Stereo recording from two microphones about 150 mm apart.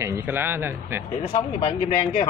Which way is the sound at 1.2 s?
35° left (ahead or behind).